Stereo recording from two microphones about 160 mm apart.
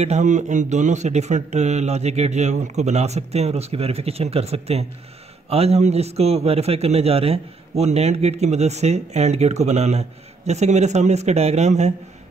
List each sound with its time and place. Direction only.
0.0 s a man's voice: 45° right (ahead or behind)